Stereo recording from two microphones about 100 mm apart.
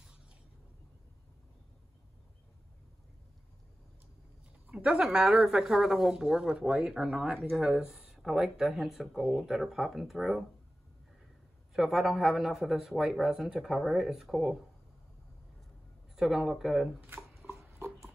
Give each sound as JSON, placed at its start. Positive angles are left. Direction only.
{"t": 4.6, "sound": "speech", "side_deg": -10}
{"t": 11.7, "sound": "speech", "side_deg": -5}
{"t": 16.2, "sound": "speech", "side_deg": -5}
{"t": 17.5, "sound": "dog", "side_deg": -25}